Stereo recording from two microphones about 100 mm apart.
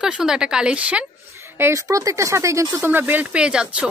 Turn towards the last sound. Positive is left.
turn(degrees=-10)  # may be behind; listen again after turning